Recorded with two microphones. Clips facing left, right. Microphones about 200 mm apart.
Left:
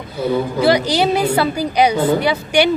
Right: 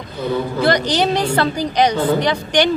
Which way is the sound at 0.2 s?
5° left (ahead or behind).